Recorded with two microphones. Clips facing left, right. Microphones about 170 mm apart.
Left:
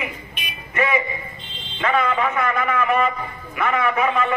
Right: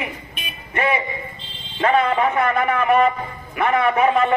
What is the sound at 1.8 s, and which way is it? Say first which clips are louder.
A man's voice: right 3 dB; 35° right (ahead or behind).